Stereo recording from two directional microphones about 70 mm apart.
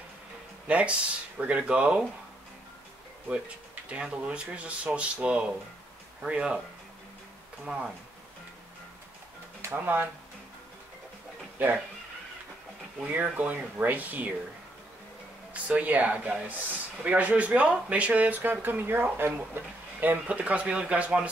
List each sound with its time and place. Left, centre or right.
0.7 s speech: centre
3.3 s speech: centre
7.6 s speech: centre
9.7 s speech: right
11.6 s speech: right
13.1 s speech: right
15.5 s speech: right